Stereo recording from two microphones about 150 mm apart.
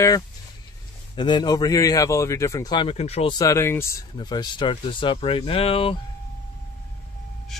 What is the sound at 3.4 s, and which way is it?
Speech, 20° left (ahead or behind).